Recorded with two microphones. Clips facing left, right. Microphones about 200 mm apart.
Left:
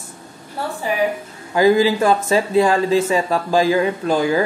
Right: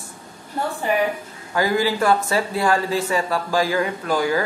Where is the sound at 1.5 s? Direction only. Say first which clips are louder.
Left 6 dB; 20° left (ahead or behind).